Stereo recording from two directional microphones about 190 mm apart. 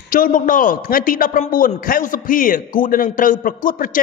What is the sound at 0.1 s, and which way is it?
A man's voice, 45° left (ahead or behind).